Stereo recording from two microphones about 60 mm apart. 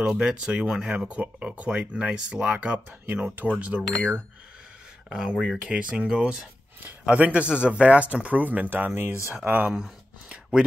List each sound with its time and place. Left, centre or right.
0.0 s speech: centre
5.1 s speech: centre; by 9.7 s right
9.7 s a sound: centre